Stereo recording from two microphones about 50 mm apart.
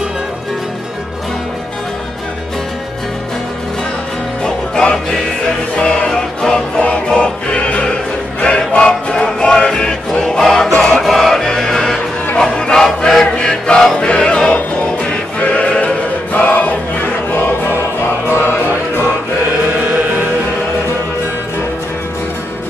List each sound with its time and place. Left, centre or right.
4.4 s music: centre
5.8 s music: left
7.2 s music: left
10.8 s choir: centre
11.1 s music: centre
12.4 s chant: centre
13.9 s music: centre
15.3 s choir: left
18.2 s music: left
19.9 s music: right